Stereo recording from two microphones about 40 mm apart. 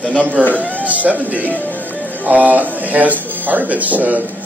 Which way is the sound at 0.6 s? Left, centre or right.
Right.